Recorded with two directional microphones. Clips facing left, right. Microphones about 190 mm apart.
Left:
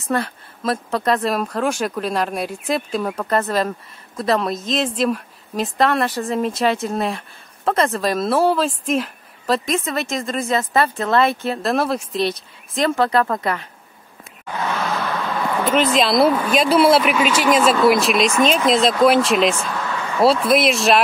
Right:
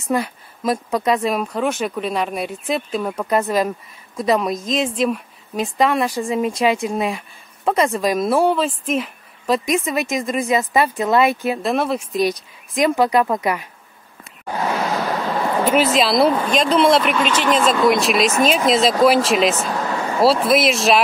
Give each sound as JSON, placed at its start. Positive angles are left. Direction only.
{"t": 0.1, "sound": "speech", "side_deg": -10}
{"t": 9.8, "sound": "speech", "side_deg": -15}
{"t": 14.6, "sound": "a sound", "side_deg": -35}
{"t": 15.7, "sound": "speech", "side_deg": -5}
{"t": 19.6, "sound": "vehicle", "side_deg": -35}
{"t": 20.4, "sound": "speech", "side_deg": 0}